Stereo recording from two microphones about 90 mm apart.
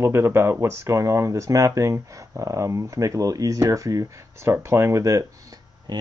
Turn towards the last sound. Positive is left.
turn(degrees=-55)  # may be behind; listen again after turning